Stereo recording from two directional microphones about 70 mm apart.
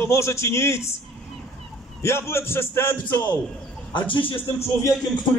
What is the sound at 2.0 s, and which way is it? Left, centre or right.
Speech, left.